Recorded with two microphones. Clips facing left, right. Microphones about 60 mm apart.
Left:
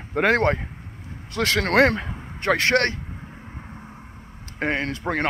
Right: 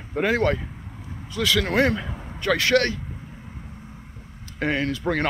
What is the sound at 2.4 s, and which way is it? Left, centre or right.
Speech, left.